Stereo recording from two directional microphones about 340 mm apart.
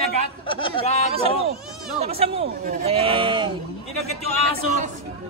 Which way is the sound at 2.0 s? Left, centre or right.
Centre.